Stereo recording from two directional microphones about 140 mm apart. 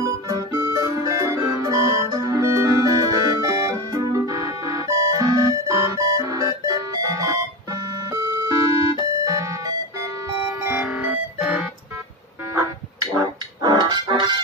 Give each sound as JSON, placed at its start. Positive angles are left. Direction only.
{"t": 0.0, "sound": "music", "side_deg": -25}
{"t": 10.6, "sound": "music", "side_deg": -15}
{"t": 12.5, "sound": "music", "side_deg": -25}